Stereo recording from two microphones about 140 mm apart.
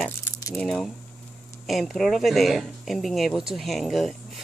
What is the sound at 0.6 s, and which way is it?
Speech, 5° left (ahead or behind).